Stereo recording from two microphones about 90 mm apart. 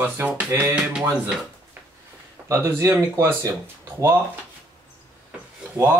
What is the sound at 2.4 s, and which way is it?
Speech, 30° right (ahead or behind).